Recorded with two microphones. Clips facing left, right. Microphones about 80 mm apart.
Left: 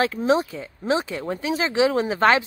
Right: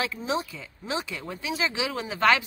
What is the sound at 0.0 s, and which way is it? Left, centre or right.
Speech, left.